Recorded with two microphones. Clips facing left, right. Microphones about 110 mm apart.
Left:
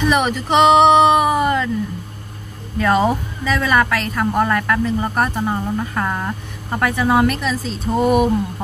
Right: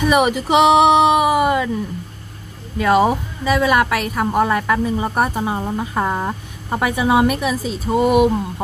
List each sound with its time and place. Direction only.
0.1 s a woman's voice: 10° right (ahead or behind)
2.8 s a woman's voice: 10° right (ahead or behind)